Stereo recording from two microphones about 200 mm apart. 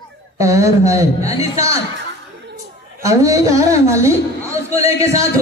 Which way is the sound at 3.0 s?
15° right (ahead or behind).